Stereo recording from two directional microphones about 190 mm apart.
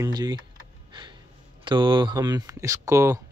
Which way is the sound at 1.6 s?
25° right (ahead or behind).